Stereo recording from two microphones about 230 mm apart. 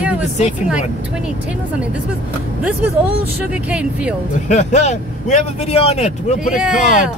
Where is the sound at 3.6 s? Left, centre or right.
Centre.